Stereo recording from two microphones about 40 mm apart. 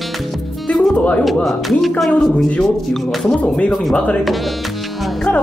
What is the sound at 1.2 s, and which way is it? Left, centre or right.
Speech, centre.